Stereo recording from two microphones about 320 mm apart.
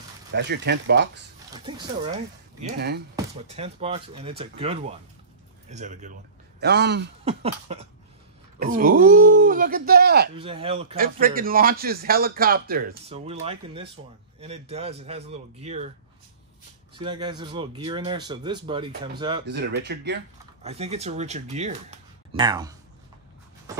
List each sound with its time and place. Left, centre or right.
0.3 s speech: right
3.2 s a man's voice: centre
7.2 s a man's voice: centre
10.3 s a man's voice: centre
17.0 s speech: centre
19.4 s speech: right
20.6 s a man's voice: centre